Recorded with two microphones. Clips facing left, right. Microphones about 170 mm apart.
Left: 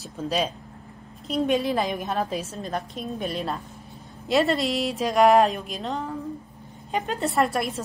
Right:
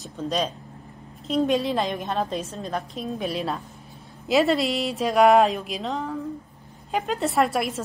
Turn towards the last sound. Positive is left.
turn(degrees=0)  # may be behind; listen again after turning